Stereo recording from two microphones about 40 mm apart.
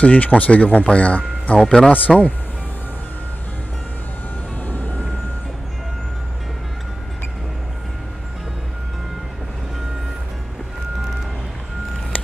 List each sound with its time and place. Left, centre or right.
0.0 s speech: left
1.9 s speech: left
4.6 s vehicle: left